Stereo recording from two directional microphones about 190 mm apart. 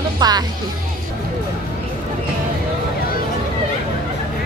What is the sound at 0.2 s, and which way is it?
Speech, 20° right (ahead or behind).